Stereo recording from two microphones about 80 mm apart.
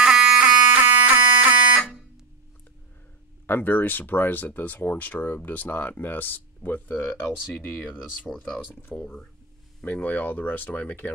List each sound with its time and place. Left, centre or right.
0.0 s music: centre
3.4 s speech: left
8.3 s speech: centre
9.0 s speech: centre
9.8 s speech: left